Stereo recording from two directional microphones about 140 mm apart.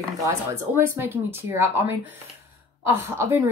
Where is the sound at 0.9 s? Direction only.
15° right (ahead or behind).